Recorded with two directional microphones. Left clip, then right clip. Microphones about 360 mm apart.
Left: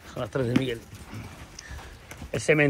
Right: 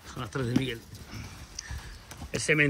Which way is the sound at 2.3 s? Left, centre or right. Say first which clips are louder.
Left 3 dB; centre.